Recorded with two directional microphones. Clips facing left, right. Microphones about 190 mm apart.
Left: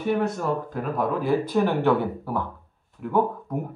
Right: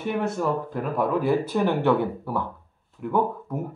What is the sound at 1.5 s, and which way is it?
A man's voice, centre (ahead or behind).